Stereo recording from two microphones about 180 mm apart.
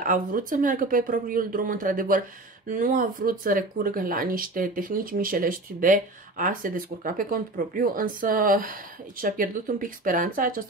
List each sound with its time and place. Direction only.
0.0 s speech: 50° right (ahead or behind)